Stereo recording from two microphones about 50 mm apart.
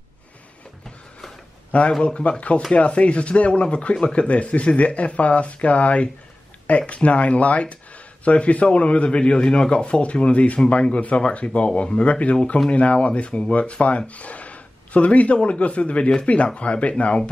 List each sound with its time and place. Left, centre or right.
1.7 s speech: left